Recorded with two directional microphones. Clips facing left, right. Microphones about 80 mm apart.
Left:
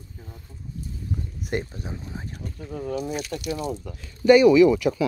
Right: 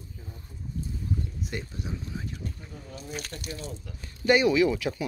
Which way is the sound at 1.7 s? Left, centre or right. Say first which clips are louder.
Left 1 dB; left.